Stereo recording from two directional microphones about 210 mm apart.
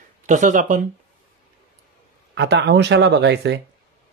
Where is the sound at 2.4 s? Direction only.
55° right (ahead or behind).